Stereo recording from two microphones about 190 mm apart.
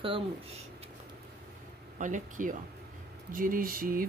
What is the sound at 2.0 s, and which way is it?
Speech, 40° right (ahead or behind).